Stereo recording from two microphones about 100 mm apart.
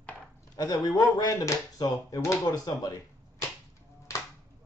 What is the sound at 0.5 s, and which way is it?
Speech, 40° left (ahead or behind).